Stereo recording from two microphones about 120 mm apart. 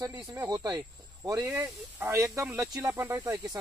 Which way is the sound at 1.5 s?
20° right (ahead or behind).